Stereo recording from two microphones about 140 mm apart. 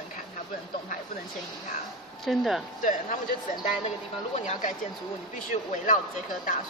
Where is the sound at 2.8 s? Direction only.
70° left (ahead or behind).